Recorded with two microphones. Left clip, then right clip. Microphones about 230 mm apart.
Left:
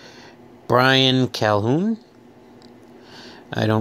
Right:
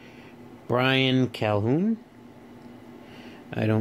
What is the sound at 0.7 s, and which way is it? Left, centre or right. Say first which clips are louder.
Speech: left 7 dB; centre.